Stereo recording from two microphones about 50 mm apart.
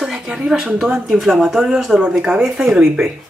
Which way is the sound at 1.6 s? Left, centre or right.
Centre.